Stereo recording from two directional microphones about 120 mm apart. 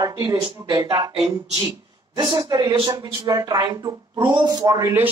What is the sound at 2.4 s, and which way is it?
A woman's voice, 35° right (ahead or behind).